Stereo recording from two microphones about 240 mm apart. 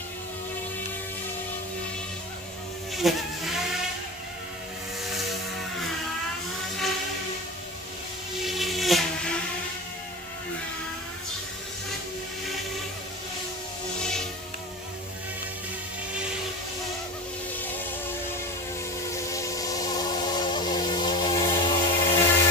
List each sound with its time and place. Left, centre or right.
2.9 s insect: centre
8.5 s a sound: centre
19.1 s train: centre